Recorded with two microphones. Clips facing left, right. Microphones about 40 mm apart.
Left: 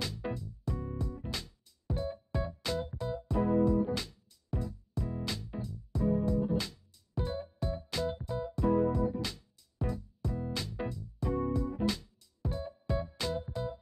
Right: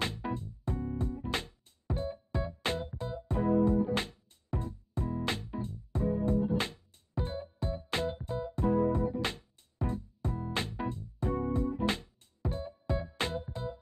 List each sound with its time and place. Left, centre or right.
0.3 s music: right